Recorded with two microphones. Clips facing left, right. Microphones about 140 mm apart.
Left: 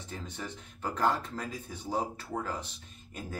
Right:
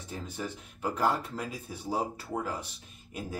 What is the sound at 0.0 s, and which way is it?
Speech, 10° right (ahead or behind).